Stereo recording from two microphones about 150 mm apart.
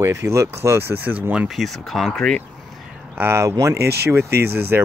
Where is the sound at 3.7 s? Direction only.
90° right.